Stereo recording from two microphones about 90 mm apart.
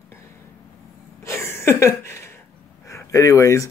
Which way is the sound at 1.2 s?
30° left (ahead or behind).